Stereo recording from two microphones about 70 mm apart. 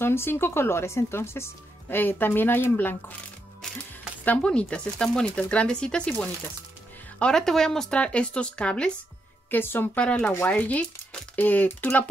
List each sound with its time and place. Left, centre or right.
0.0 s speech: left
4.4 s speech: centre
9.5 s speech: left
9.9 s speech: centre